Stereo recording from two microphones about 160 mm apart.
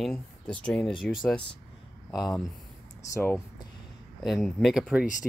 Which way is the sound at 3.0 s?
20° left (ahead or behind).